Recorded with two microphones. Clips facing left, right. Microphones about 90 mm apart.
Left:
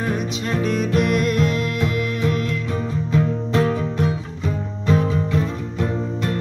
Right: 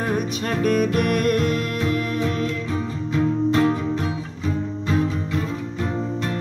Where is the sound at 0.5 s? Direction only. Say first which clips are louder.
Right 1 dB; 50° right (ahead or behind).